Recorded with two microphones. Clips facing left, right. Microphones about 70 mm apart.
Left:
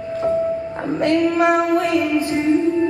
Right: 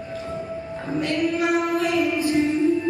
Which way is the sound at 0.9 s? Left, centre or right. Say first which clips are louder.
Left 6 dB; left.